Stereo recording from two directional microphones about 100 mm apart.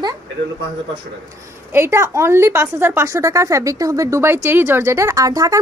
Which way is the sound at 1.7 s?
25° right (ahead or behind).